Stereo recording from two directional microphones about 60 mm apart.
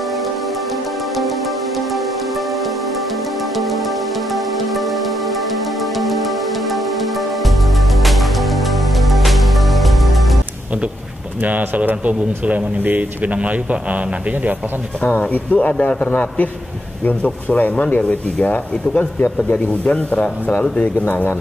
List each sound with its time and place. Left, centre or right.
5.9 s music: centre
11.4 s speech: right
15.0 s speech: left
15.5 s speech: left